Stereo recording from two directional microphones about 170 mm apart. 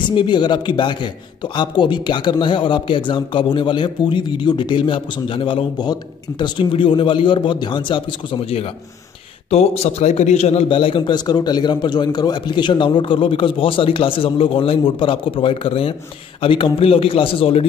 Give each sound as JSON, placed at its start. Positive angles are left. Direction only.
{"t": 0.1, "sound": "a man's voice", "side_deg": 30}